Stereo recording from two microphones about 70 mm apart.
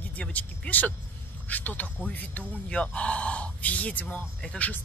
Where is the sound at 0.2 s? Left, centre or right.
Left.